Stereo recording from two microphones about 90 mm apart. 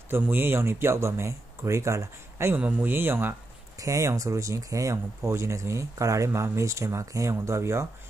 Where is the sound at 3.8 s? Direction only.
35° right (ahead or behind).